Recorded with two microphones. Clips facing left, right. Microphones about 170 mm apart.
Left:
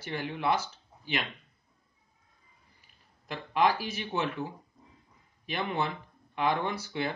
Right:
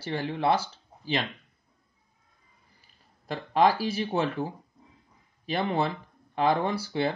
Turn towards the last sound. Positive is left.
turn(degrees=-30)  # may be behind; listen again after turning